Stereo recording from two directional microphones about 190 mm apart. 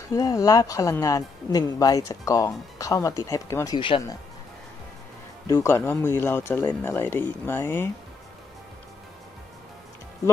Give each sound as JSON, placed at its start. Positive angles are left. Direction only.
{"t": 0.1, "sound": "speech", "side_deg": 20}
{"t": 5.5, "sound": "speech", "side_deg": 15}